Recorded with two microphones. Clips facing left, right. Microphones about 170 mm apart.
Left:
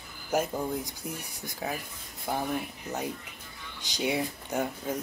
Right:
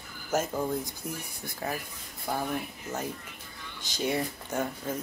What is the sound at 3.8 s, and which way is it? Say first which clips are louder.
Speech: even; 15° left (ahead or behind).